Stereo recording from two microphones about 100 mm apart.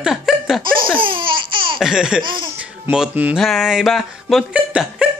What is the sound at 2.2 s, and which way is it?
Speech, 55° right (ahead or behind).